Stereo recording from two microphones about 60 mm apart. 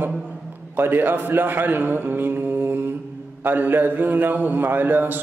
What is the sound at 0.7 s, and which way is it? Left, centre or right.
A man's voice, right.